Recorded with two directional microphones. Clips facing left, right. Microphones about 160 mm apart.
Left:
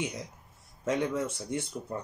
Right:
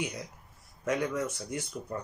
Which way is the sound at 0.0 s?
25° left (ahead or behind).